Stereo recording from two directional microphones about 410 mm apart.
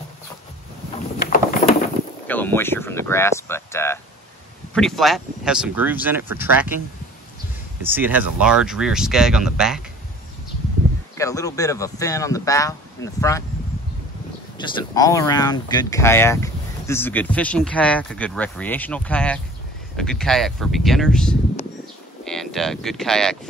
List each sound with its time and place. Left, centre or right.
1.2 s a sound: left
2.2 s speech: centre
7.8 s speech: centre
11.1 s speech: centre
14.6 s speech: centre